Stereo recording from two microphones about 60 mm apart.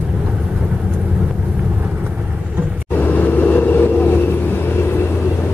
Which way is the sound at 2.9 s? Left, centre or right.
Left.